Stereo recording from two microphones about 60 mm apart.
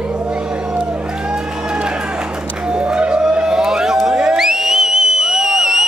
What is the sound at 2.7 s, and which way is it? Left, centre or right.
Music, centre.